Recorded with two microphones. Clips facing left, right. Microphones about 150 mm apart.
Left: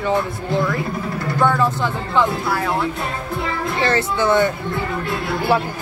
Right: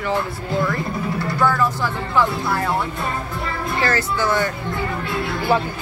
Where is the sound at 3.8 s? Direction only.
25° left (ahead or behind).